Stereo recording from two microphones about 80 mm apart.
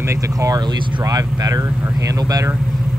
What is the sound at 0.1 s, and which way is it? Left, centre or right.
Speech, right.